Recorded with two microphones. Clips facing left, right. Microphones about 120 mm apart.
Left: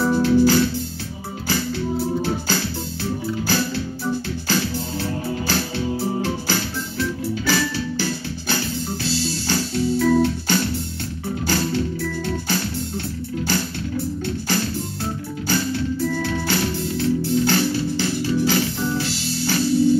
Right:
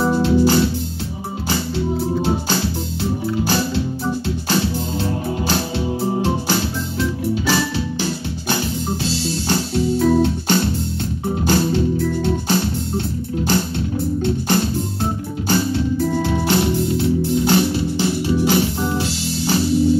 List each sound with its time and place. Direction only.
0.0 s music: 20° right (ahead or behind)
3.4 s music: 20° right (ahead or behind)
5.5 s music: 20° right (ahead or behind)